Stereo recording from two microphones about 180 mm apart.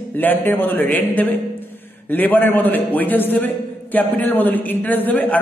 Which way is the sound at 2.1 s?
10° left (ahead or behind).